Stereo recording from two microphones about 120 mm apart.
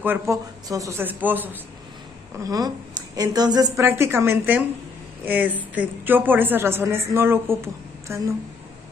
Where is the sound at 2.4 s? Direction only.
30° right (ahead or behind).